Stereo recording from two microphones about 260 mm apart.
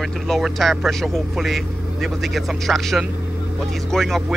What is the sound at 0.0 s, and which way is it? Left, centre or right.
Speech, centre.